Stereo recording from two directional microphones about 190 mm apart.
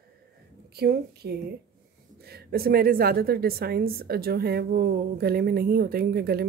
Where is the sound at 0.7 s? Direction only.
55° right (ahead or behind).